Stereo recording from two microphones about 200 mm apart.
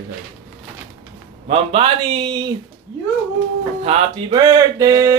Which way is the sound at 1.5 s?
30° right (ahead or behind).